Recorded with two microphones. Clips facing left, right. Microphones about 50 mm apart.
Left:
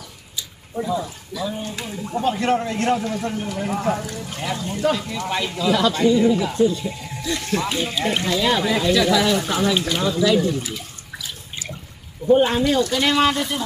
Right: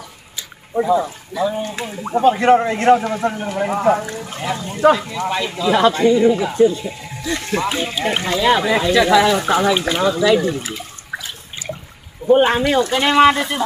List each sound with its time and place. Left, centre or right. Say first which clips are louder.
0.8 s a man's voice: right 7 dB; right
5.7 s speech: right 4 dB; right
6.1 s a man's voice: right 3 dB; right
10.6 s water: right 2 dB; right
12.3 s speech: right 3 dB; right